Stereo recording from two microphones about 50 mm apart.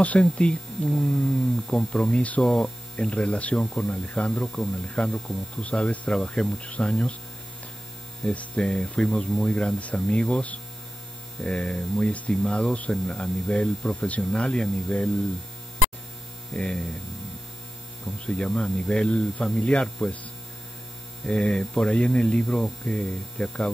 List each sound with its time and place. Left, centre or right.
0.0 s speech: left; by 2.7 s centre
3.0 s speech: left
3.6 s speech: centre
4.8 s speech: left
8.2 s speech: left
16.5 s speech: centre
18.2 s speech: left
21.3 s speech: centre